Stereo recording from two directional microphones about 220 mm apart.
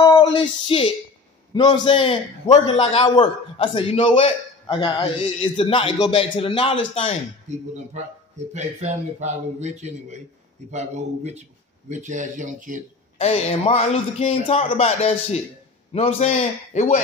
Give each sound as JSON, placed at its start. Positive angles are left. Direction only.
{"t": 0.0, "sound": "a sound", "side_deg": 20}
{"t": 1.5, "sound": "a man's voice", "side_deg": 20}
{"t": 7.5, "sound": "a man's voice", "side_deg": -30}
{"t": 13.2, "sound": "a man's voice", "side_deg": 30}